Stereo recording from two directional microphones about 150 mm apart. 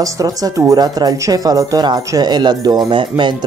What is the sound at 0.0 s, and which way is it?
Speech, 25° right (ahead or behind).